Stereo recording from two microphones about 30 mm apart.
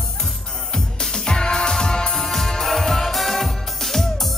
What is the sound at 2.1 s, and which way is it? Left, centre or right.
Music, centre.